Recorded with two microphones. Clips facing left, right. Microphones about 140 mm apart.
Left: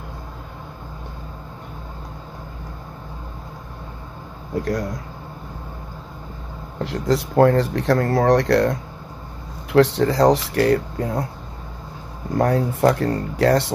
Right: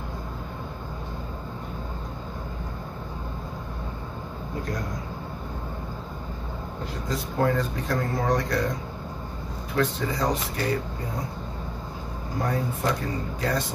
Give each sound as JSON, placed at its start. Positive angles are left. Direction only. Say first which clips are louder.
{"t": 6.8, "sound": "speech", "louder": "left 11 dB", "side_deg": 80}
{"t": 12.4, "sound": "speech", "louder": "left 9 dB", "side_deg": 75}